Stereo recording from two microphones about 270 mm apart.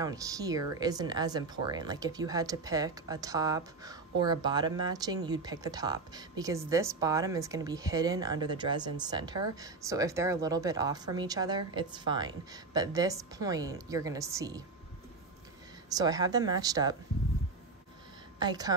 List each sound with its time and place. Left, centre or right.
0.0 s speech: centre
15.9 s speech: centre
18.4 s speech: centre